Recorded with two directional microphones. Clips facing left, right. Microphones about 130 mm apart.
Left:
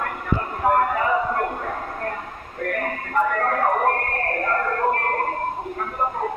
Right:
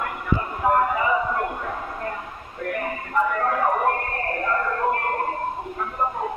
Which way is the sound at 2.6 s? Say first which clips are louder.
Left 2 dB; 50° left (ahead or behind).